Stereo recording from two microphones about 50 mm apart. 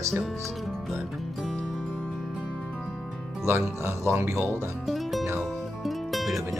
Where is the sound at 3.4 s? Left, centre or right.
Right.